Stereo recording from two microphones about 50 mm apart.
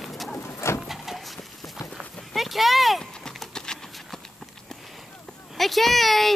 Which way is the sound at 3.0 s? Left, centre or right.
Centre.